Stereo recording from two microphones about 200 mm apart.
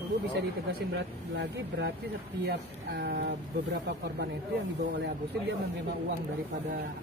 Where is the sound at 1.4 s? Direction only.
60° right (ahead or behind).